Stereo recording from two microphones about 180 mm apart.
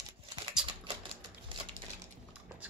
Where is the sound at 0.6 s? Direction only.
25° right (ahead or behind).